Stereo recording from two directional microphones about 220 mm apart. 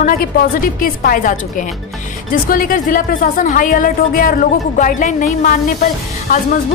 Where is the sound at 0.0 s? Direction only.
40° left (ahead or behind).